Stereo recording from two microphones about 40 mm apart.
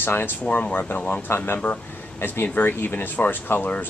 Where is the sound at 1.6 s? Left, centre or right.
Left.